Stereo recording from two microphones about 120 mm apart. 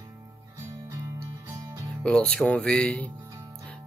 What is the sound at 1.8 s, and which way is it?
Speech, 10° left (ahead or behind).